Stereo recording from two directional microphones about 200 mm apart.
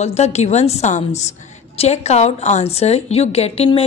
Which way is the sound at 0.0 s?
35° left (ahead or behind).